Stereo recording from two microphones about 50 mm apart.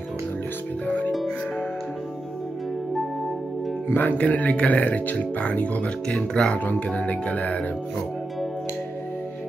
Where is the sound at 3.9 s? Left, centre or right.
Left.